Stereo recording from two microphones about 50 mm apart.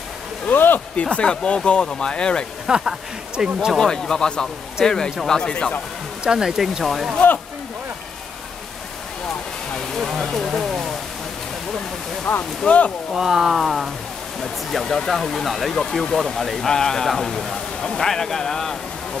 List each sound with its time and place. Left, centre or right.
0.5 s speech: left
1.1 s speech: centre
2.7 s speech: centre
3.7 s speech: centre
5.5 s speech: left
6.2 s speech: centre
9.8 s speech: centre
12.3 s speech: left
13.1 s speech: centre